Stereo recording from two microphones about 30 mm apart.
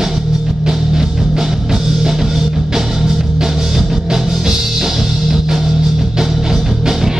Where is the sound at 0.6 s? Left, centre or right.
Centre.